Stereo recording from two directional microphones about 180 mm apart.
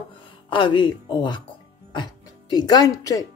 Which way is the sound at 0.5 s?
25° left (ahead or behind).